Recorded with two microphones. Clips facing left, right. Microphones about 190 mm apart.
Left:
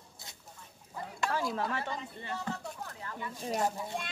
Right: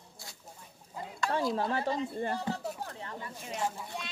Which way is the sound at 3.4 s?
35° left (ahead or behind).